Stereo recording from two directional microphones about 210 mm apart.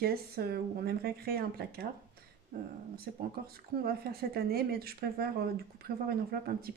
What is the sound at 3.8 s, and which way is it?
Speech, 45° right (ahead or behind).